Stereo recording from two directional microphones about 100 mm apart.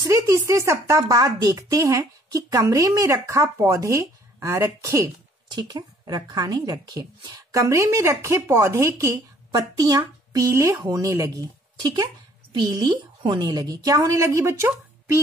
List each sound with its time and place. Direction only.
0.0 s speech: 30° right (ahead or behind)
5.5 s speech: 45° right (ahead or behind)
12.5 s speech: 45° right (ahead or behind); by 15.1 s 25° right (ahead or behind)